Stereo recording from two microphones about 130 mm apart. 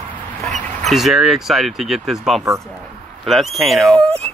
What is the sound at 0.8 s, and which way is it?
A woman's voice, centre (ahead or behind).